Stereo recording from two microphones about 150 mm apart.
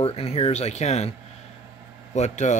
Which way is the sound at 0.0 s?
40° left (ahead or behind).